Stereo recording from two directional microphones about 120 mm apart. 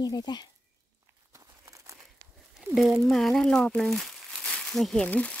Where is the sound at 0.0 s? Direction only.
35° left (ahead or behind).